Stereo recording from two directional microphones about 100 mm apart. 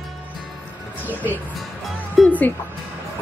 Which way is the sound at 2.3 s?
15° left (ahead or behind).